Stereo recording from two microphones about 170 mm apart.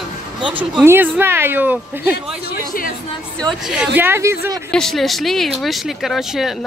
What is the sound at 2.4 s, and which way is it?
Speech, 60° left (ahead or behind).